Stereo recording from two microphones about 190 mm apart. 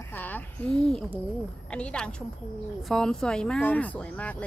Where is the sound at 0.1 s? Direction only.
10° left (ahead or behind).